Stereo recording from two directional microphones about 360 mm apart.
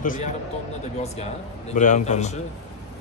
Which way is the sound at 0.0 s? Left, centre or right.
Left.